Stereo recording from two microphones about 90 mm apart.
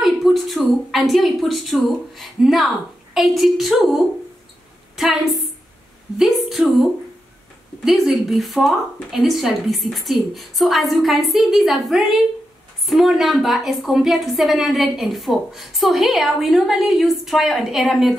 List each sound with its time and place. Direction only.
0.0 s a woman's voice: centre (ahead or behind)
7.8 s a woman's voice: centre (ahead or behind)